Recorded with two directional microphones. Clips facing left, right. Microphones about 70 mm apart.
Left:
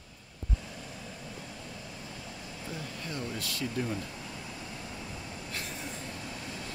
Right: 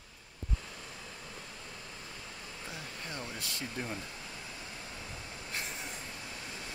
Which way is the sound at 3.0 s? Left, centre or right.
Right.